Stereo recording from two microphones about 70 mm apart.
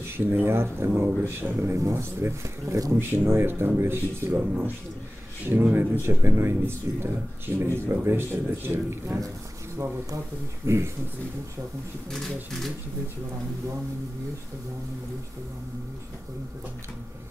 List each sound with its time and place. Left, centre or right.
0.2 s speech: right
10.6 s speech: right
12.1 s speech: centre